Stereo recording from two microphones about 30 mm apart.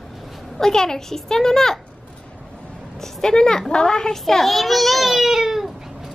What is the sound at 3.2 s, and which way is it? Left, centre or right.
Speech, left.